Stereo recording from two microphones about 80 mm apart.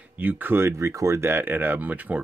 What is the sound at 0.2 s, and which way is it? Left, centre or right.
Speech, right.